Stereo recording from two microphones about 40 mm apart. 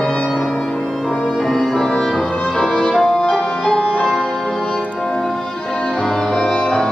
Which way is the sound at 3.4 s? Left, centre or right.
Left.